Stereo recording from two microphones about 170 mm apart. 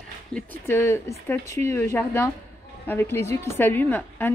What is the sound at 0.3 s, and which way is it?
A woman's voice, 15° left (ahead or behind).